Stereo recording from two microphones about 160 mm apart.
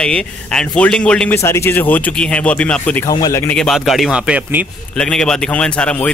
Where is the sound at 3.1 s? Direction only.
25° left (ahead or behind).